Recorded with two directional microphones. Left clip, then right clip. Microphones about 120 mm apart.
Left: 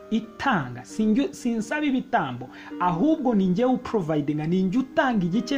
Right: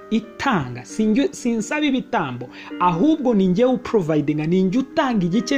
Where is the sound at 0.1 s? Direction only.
25° right (ahead or behind).